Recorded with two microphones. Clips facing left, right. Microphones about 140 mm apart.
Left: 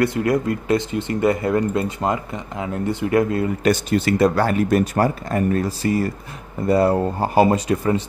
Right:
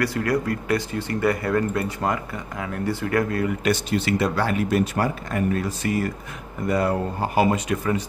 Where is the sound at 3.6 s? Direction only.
45° left (ahead or behind).